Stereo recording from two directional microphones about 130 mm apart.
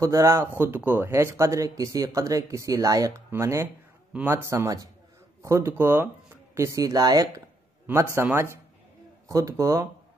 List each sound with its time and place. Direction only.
0.0 s speech: 25° right (ahead or behind)
7.8 s speech: 20° right (ahead or behind)